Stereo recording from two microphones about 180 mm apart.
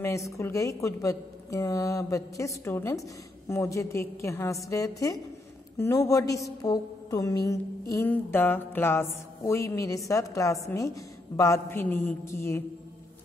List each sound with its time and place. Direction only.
0.0 s music: 15° left (ahead or behind)
6.6 s mantra: 20° left (ahead or behind)
7.9 s music: 10° left (ahead or behind)